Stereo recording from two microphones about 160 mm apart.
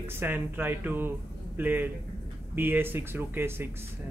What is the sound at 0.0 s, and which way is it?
Speech, 10° right (ahead or behind).